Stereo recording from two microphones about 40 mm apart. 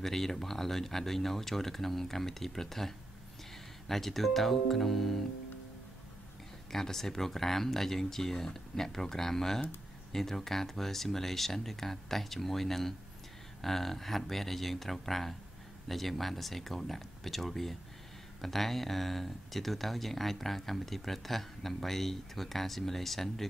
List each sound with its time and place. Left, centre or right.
0.0 s speech: centre
3.9 s speech: centre
6.7 s speech: centre